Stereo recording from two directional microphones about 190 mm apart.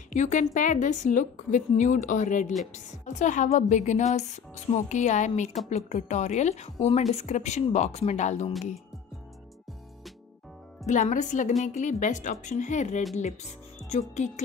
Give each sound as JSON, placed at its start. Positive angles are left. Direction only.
{"t": 0.1, "sound": "a woman's voice", "side_deg": 40}
{"t": 10.9, "sound": "a woman's voice", "side_deg": 40}